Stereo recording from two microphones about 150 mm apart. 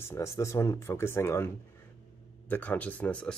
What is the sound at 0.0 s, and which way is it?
Speech, 20° left (ahead or behind).